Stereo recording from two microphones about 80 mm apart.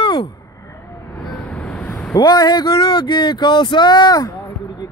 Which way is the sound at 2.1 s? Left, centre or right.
Left.